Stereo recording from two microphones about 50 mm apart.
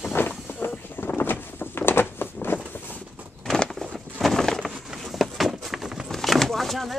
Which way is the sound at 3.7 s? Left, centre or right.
Centre.